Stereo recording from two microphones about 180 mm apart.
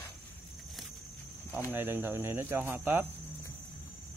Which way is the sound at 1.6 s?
10° right (ahead or behind).